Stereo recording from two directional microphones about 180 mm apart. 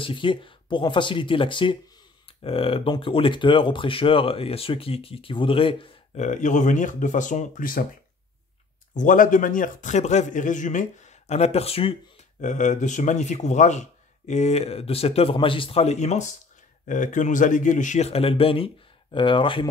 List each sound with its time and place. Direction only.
0.0 s speech: 30° left (ahead or behind)
6.2 s speech: 45° left (ahead or behind)
8.9 s speech: 45° left (ahead or behind); by 12.0 s 30° left (ahead or behind)
12.4 s speech: 45° left (ahead or behind); by 19.7 s 30° left (ahead or behind)